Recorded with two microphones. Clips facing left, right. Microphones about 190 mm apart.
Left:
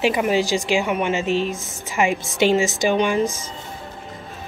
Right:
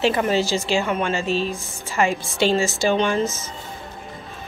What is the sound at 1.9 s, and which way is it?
A woman's voice, 15° left (ahead or behind).